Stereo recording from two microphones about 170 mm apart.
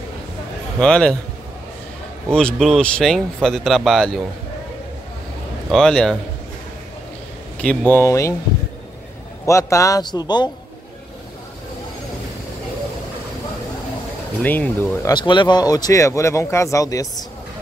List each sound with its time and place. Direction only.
0.7 s speech: 5° left (ahead or behind)
2.3 s speech: centre (ahead or behind)
5.7 s speech: 5° left (ahead or behind)
7.6 s speech: 10° left (ahead or behind)
9.5 s speech: 20° left (ahead or behind)
14.4 s speech: 10° left (ahead or behind)
15.0 s speech: 25° left (ahead or behind)